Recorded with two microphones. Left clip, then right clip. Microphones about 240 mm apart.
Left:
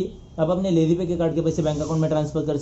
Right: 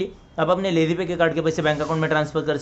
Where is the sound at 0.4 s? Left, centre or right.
Right.